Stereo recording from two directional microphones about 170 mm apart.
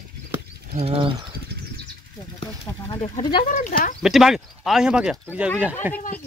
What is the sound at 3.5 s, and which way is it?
Speech, 55° left (ahead or behind).